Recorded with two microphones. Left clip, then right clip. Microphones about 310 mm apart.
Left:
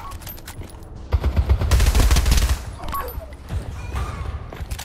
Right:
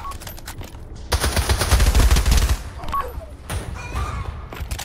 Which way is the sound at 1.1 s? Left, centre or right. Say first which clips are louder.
Right 8 dB; right.